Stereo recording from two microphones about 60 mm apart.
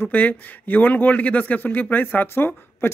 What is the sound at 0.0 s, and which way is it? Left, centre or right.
Speech, left.